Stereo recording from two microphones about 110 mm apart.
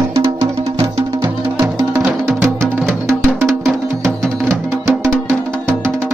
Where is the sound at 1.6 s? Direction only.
35° right (ahead or behind).